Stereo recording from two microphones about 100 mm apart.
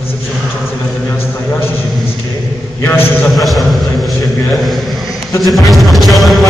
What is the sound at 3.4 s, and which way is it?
Music, centre (ahead or behind).